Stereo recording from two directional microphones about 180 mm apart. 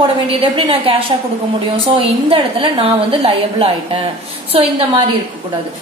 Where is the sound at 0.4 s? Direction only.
30° right (ahead or behind).